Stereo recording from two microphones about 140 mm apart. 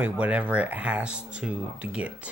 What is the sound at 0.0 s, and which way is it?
Speech, 10° right (ahead or behind).